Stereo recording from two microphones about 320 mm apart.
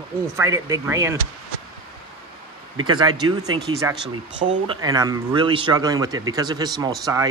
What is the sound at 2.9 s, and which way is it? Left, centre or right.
Speech, centre.